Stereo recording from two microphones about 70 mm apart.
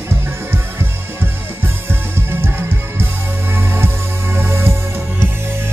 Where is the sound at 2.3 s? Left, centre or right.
Right.